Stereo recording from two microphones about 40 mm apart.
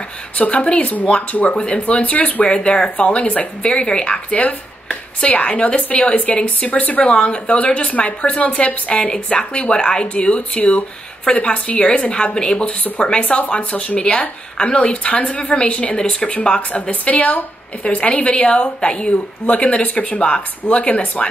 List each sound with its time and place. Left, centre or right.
0.4 s a woman's voice: left
2.4 s a woman's voice: left
9.3 s a woman's voice: left
15.2 s a woman's voice: left
20.2 s a woman's voice: left